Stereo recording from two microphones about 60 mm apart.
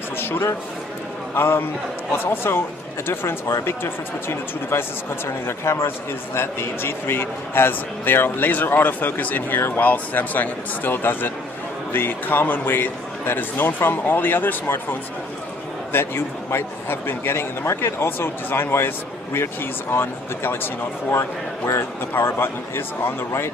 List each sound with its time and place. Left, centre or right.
1.3 s a man's voice: left
2.4 s speech: left
3.6 s a man's voice: left
21.2 s speech: left
22.1 s a man's voice: left